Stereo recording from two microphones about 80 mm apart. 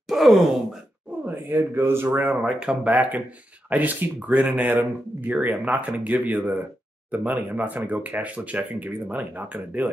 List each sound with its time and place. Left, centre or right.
0.1 s groan: centre
1.2 s speech: right
2.4 s speech: centre